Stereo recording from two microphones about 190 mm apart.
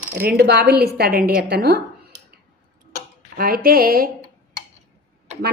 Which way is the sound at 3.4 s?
50° right (ahead or behind).